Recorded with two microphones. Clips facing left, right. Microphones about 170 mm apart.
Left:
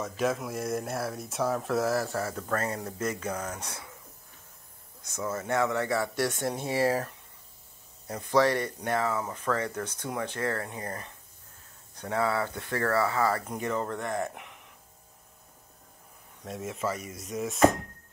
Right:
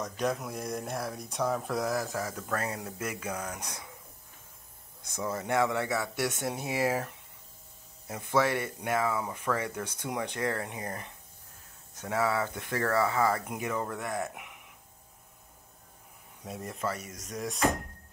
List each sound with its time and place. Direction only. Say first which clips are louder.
0.0 s speech: left 2 dB; 5° left (ahead or behind)
2.0 s speech: left 3 dB; 10° right (ahead or behind)
5.1 s speech: even; 15° right (ahead or behind)
6.4 s speech: left 3 dB; 5° right (ahead or behind)
6.7 s speech: left 3 dB; 15° right (ahead or behind)
8.4 s speech: left 3 dB; 10° right (ahead or behind)
16.4 s speech: left 2 dB; centre (ahead or behind)